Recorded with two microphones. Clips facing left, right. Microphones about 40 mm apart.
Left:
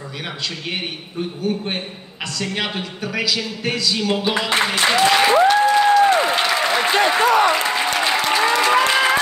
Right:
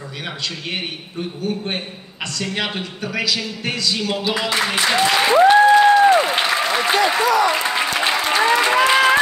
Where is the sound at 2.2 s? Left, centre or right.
Centre.